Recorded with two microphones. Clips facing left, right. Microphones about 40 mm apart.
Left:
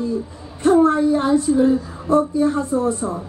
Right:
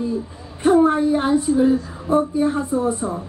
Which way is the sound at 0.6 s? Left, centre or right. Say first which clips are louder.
Left 1 dB; right.